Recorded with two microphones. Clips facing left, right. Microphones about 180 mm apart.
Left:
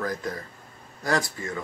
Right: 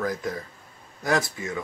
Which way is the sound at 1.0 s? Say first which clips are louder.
Right 1 dB; 15° right (ahead or behind).